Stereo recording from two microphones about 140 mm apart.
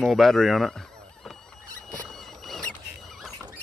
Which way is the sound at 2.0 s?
Centre (ahead or behind).